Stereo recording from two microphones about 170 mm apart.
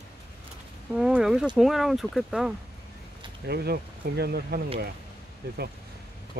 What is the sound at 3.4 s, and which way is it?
Speech, 65° right (ahead or behind).